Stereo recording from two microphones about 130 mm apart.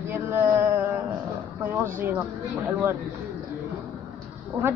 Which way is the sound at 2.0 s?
20° right (ahead or behind).